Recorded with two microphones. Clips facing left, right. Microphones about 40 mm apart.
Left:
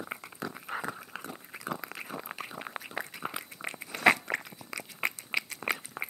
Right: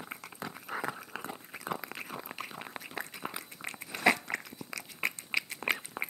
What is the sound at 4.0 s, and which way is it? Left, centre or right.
Crunch, left.